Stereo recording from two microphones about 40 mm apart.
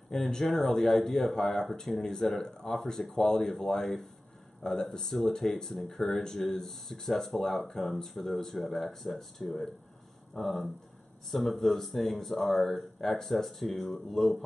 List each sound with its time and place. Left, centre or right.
0.1 s speech: centre
4.6 s speech: centre
5.1 s speech: centre